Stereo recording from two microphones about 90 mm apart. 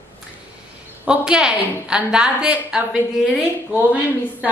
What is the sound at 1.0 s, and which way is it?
Speech, 10° right (ahead or behind).